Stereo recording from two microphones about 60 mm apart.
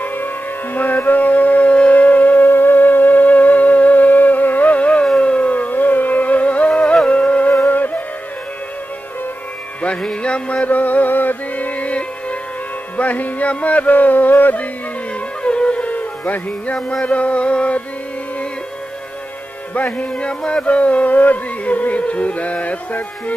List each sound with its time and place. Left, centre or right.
0.0 s music: left
10.0 s music: centre
15.4 s music: centre
19.7 s music: left